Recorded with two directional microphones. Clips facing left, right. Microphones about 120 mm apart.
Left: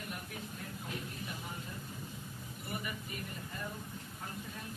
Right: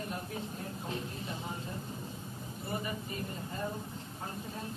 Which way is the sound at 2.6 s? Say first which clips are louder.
Right 5 dB; 30° right (ahead or behind).